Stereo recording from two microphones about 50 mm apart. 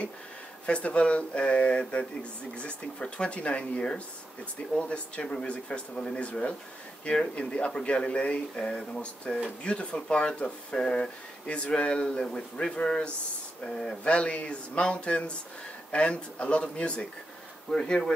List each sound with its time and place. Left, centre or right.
0.7 s speech: left
17.6 s speech: centre